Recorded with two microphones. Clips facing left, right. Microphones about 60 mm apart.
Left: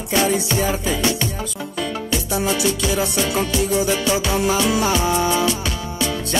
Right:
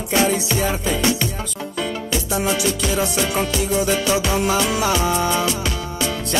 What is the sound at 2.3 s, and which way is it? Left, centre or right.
Music, centre.